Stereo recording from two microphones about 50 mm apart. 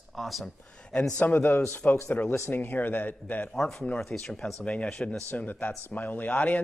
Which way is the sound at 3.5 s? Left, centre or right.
Centre.